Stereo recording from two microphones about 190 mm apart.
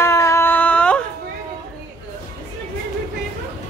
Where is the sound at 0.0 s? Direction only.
15° left (ahead or behind).